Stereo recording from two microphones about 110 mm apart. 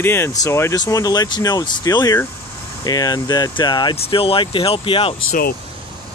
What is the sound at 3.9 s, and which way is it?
Speech, 55° left (ahead or behind).